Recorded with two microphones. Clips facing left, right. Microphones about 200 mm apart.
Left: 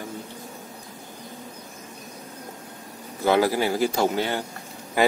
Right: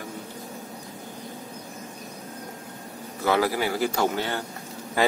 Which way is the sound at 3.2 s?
25° left (ahead or behind).